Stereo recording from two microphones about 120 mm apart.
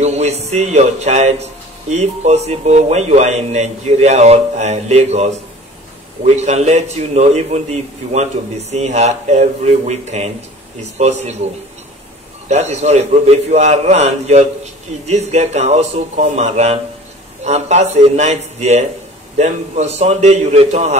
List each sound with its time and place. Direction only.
0.0 s a man's voice: 65° right (ahead or behind)
12.4 s a man's voice: 65° right (ahead or behind)